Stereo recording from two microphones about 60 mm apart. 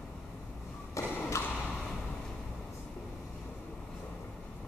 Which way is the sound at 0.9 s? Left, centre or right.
Left.